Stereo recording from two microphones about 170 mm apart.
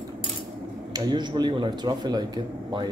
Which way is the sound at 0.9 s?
25° right (ahead or behind).